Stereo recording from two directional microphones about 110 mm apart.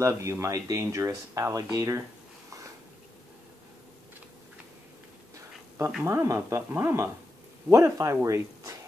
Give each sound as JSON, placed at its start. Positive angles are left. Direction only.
{"t": 0.0, "sound": "speech", "side_deg": -25}
{"t": 6.0, "sound": "speech", "side_deg": -25}